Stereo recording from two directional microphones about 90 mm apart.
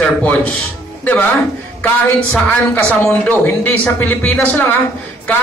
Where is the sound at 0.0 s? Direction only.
15° left (ahead or behind).